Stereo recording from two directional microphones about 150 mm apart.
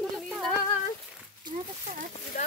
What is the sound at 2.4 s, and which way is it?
Speech, 55° left (ahead or behind).